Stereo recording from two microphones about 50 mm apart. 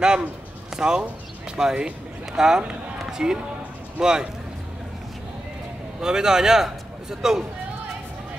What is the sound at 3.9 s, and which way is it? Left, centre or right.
Speech, centre.